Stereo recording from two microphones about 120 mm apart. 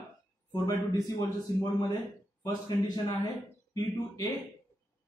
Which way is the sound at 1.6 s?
35° left (ahead or behind).